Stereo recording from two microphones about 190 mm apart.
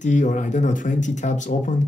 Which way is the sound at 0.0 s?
40° left (ahead or behind).